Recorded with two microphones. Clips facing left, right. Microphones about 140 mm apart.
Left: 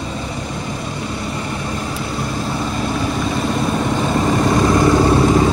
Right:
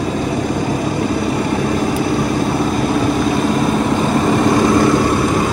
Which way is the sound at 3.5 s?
Centre (ahead or behind).